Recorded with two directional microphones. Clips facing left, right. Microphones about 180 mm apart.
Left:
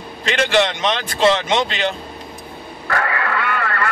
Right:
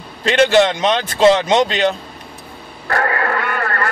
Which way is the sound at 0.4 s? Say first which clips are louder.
Right 5 dB; 40° right (ahead or behind).